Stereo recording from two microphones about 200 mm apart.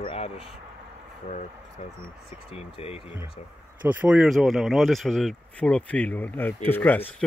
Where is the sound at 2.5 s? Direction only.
30° left (ahead or behind).